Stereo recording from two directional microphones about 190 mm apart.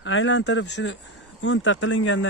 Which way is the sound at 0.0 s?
85° left.